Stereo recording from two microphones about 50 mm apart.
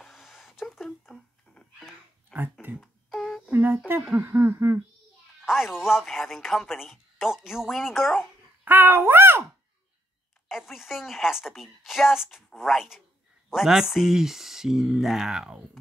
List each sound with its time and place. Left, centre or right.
0.0 s a sound: centre
2.3 s a sound: centre
3.2 s humming: centre
3.5 s speech: right
5.5 s speech: centre
6.0 s a woman's voice: centre
8.6 s speech: right
10.5 s a woman's voice: centre